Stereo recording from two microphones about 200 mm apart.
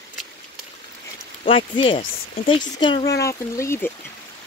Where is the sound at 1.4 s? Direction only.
25° left (ahead or behind).